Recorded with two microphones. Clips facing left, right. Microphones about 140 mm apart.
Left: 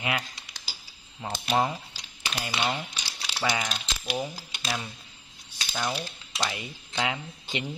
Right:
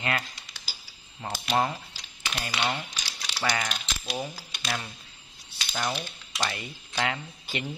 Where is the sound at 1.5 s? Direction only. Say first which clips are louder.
Left 1 dB; 5° left (ahead or behind).